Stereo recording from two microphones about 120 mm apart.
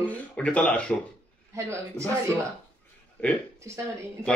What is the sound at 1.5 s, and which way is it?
Speech, 25° right (ahead or behind).